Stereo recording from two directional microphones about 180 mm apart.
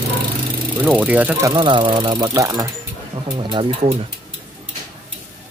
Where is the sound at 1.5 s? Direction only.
25° right (ahead or behind).